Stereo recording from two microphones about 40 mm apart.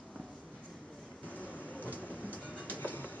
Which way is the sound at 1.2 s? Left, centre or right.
Left.